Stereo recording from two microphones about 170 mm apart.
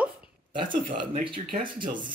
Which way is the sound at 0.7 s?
55° right (ahead or behind).